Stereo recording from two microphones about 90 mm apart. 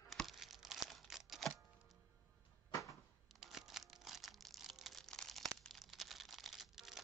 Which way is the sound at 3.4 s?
5° right (ahead or behind).